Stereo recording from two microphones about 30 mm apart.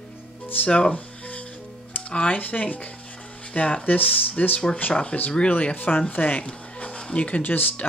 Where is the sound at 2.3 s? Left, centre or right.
Left.